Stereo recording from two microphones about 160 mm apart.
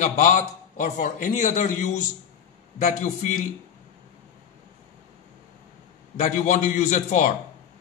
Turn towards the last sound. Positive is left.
turn(degrees=45)  # may be behind; listen again after turning